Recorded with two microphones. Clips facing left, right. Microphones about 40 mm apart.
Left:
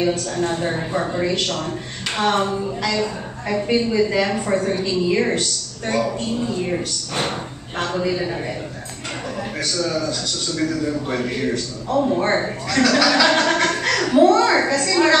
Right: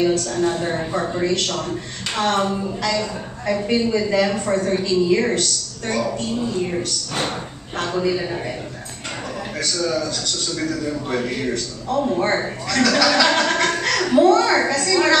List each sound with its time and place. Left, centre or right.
0.0 s a woman's voice: centre
9.6 s a woman's voice: centre